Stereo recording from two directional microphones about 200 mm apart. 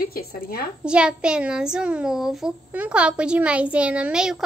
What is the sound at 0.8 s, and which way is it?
A child's voice, 5° right (ahead or behind).